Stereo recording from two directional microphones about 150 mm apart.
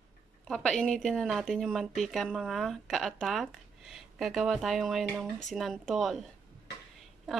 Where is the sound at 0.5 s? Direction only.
5° left (ahead or behind).